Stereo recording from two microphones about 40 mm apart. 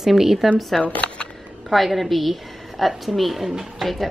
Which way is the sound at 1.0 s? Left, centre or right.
Centre.